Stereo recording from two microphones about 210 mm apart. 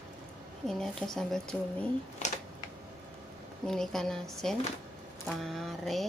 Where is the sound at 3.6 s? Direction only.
Centre (ahead or behind).